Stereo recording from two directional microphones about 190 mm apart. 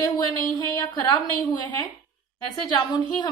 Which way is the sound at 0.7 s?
20° left (ahead or behind).